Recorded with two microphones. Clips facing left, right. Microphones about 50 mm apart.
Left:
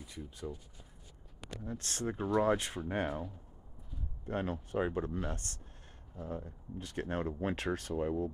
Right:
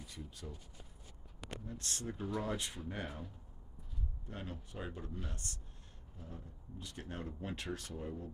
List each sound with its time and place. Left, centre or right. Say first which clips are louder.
0.0 s speech: left 6 dB; centre
1.6 s speech: left 8 dB; left
4.3 s speech: left 12 dB; left